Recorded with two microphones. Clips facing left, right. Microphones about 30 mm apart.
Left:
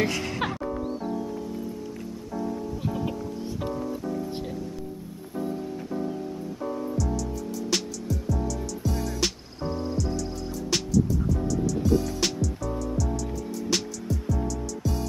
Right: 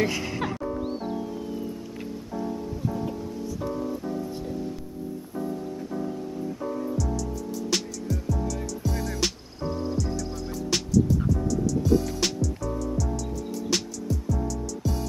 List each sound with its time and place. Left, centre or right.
0.0 s music: centre
0.8 s music: right
3.7 s music: centre
6.6 s music: centre